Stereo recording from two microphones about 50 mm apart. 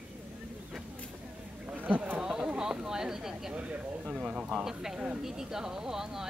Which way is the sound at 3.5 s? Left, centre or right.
Right.